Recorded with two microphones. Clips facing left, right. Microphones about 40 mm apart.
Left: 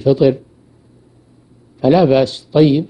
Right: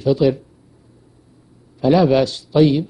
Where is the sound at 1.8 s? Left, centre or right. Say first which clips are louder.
Left 3 dB; left.